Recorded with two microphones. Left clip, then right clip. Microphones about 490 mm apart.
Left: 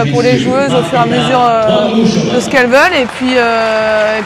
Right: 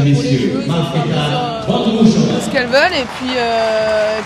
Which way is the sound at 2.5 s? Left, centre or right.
Left.